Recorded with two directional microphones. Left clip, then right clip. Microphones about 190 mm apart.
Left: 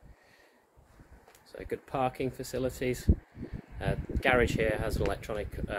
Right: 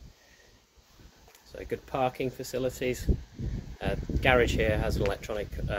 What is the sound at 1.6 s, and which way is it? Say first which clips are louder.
Speech: right 2 dB; 15° left (ahead or behind).